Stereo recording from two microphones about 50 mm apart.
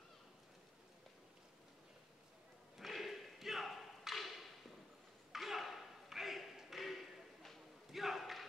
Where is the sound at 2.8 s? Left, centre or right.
Centre.